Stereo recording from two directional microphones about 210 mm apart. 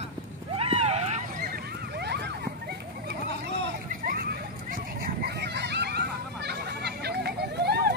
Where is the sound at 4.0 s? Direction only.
45° right (ahead or behind).